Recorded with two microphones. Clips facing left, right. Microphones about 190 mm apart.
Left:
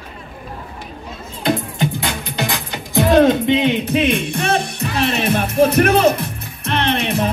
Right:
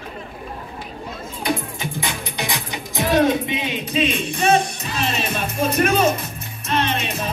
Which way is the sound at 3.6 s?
65° left (ahead or behind).